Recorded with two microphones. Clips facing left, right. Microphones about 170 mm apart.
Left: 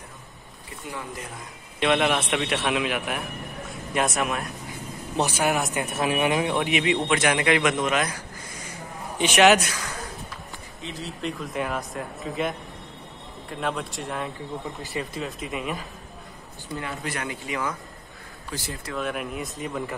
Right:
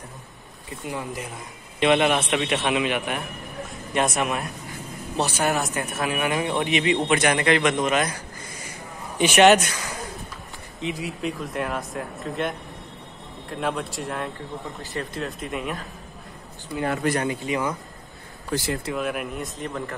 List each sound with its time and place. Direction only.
0.8 s speech: 20° right (ahead or behind)
1.8 s a man's voice: centre (ahead or behind)
5.1 s speech: 15° left (ahead or behind)
5.9 s speech: 25° left (ahead or behind)
6.4 s speech: 5° left (ahead or behind)
9.2 s speech: centre (ahead or behind)
10.8 s speech: 15° right (ahead or behind)
11.1 s speech: centre (ahead or behind)
17.2 s speech: 25° right (ahead or behind)
18.5 s speech: 55° right (ahead or behind)
18.9 s speech: 5° right (ahead or behind)